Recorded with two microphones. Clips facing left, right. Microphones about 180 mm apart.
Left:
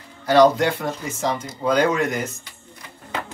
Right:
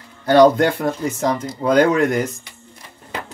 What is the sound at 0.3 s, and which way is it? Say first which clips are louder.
Speech: right 3 dB; 55° right (ahead or behind).